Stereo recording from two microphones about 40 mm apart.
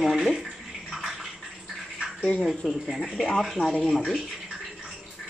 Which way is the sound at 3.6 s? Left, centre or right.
Left.